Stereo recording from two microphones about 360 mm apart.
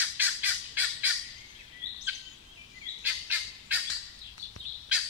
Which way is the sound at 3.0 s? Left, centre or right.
Centre.